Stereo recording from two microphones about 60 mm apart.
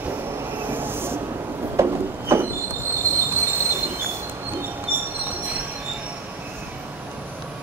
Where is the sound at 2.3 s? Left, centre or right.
Right.